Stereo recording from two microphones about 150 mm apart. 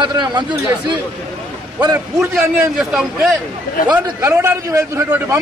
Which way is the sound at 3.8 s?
65° left (ahead or behind).